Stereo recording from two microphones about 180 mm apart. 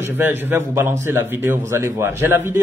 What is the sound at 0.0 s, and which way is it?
Speech, 10° right (ahead or behind).